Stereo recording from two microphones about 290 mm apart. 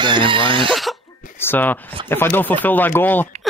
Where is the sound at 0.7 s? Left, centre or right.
Centre.